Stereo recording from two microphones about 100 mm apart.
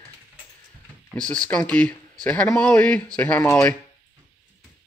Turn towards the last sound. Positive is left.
turn(degrees=10)  # may be behind; listen again after turning